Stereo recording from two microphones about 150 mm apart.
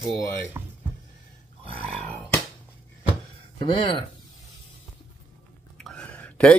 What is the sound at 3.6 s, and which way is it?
Speech, 35° left (ahead or behind).